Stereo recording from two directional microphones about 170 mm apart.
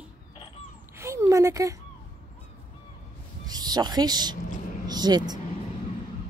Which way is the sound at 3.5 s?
25° right (ahead or behind).